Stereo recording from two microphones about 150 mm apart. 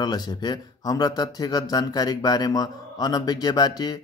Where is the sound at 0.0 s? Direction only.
25° left (ahead or behind).